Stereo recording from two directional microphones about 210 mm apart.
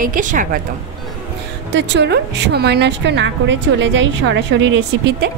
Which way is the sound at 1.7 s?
55° right (ahead or behind).